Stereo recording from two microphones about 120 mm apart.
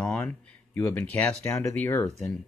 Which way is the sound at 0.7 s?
20° left (ahead or behind).